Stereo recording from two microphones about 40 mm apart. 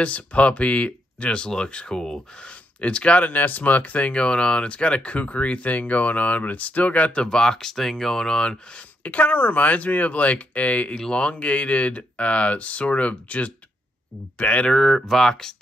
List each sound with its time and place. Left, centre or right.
0.0 s speech: left
3.3 s speech: left
7.2 s speech: centre
9.0 s speech: left
11.0 s speech: left
14.7 s speech: centre